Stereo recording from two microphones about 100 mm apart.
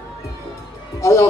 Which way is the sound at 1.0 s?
30° left (ahead or behind).